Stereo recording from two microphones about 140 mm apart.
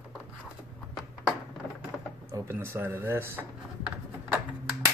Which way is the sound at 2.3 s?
20° right (ahead or behind).